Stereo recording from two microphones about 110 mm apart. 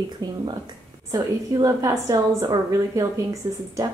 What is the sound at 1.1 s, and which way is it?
A woman's voice, 30° right (ahead or behind).